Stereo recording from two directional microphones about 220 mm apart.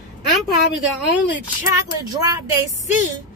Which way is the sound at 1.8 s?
15° right (ahead or behind).